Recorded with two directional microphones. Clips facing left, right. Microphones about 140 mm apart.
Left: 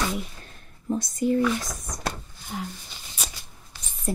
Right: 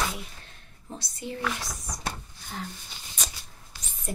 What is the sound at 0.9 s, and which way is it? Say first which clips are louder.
Speech: left 13 dB; 45° left (ahead or behind).